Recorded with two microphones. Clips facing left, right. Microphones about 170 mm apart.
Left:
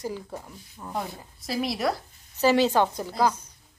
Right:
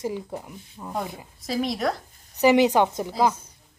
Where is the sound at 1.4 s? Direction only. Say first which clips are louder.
Right 2 dB; 5° left (ahead or behind).